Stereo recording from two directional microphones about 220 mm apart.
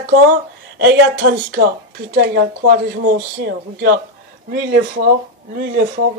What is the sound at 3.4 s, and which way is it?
Speech, 45° right (ahead or behind).